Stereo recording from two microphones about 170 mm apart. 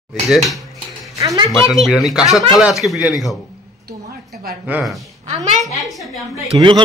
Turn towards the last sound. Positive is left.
turn(degrees=-25)  # may be behind; listen again after turning